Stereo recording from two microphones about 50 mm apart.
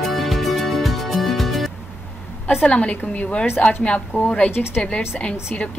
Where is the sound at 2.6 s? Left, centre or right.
Left.